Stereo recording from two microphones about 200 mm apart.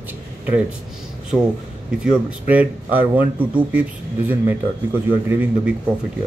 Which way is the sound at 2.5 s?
10° right (ahead or behind).